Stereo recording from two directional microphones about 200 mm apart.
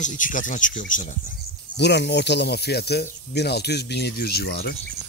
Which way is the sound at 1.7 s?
55° left (ahead or behind).